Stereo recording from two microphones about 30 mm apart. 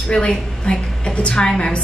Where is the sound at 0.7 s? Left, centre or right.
Left.